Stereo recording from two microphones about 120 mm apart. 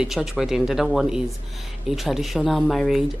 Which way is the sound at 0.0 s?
Centre (ahead or behind).